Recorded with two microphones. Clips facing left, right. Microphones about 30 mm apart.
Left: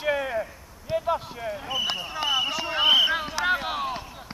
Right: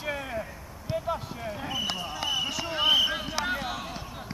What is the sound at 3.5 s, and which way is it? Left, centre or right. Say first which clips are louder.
Run: left 6 dB; left.